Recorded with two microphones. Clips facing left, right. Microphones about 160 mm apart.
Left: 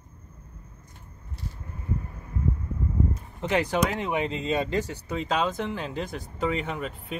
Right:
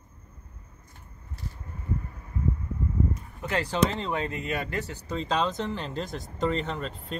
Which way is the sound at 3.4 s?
20° left (ahead or behind).